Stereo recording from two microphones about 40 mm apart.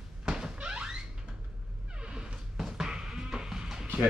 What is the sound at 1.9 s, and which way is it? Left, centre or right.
Music, right.